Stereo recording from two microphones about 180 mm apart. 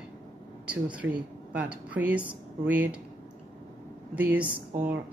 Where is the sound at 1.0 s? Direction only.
90° right.